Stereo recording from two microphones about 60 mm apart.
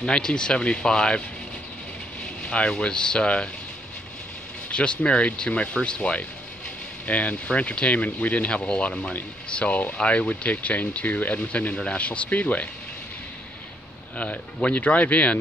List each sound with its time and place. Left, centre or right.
0.0 s speech: centre
2.4 s speech: left
4.6 s speech: centre
14.1 s speech: left